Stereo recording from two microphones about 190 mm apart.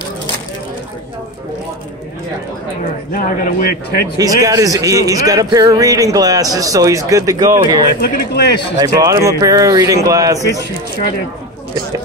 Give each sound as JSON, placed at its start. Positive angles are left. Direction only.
{"t": 3.1, "sound": "speech", "side_deg": 45}
{"t": 4.2, "sound": "a man's voice", "side_deg": -20}
{"t": 8.0, "sound": "speech", "side_deg": 55}
{"t": 8.7, "sound": "a man's voice", "side_deg": -20}